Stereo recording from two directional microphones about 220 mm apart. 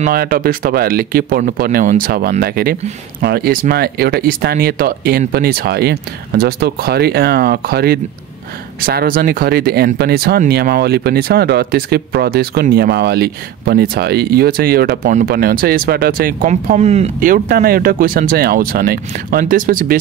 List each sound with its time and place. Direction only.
0.0 s speech: 40° right (ahead or behind)